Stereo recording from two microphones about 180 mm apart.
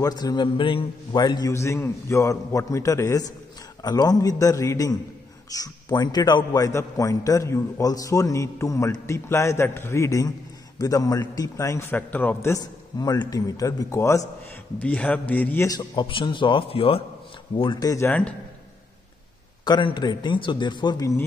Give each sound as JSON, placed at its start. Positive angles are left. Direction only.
{"t": 0.0, "sound": "a man's voice", "side_deg": 20}
{"t": 19.6, "sound": "a man's voice", "side_deg": 25}